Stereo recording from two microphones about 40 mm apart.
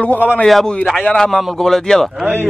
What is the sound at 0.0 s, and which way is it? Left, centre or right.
Speech, left.